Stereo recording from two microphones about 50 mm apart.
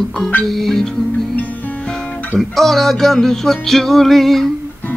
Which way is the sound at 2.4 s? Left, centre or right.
Centre.